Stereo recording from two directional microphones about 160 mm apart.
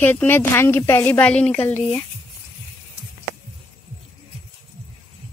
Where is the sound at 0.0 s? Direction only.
10° left (ahead or behind).